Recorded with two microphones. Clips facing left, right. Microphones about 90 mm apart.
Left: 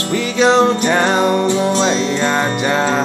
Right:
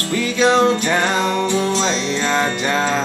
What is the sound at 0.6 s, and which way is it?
Music, 20° left (ahead or behind).